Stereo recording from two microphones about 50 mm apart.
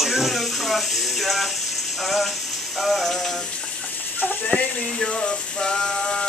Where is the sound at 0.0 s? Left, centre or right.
Centre.